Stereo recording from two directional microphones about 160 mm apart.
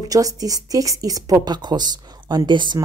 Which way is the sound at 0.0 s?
20° right (ahead or behind).